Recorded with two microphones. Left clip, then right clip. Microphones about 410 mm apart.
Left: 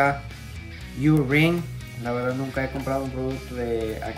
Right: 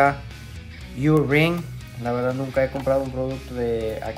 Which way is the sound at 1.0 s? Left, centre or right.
Centre.